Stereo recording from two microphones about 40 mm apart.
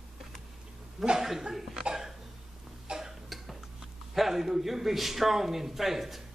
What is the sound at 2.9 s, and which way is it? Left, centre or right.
Cough, centre.